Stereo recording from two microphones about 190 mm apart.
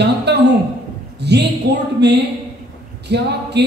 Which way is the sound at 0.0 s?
60° right (ahead or behind).